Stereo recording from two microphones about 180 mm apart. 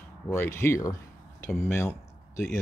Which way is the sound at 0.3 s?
15° left (ahead or behind).